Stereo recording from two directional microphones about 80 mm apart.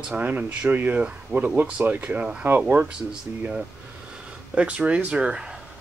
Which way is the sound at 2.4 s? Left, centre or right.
Right.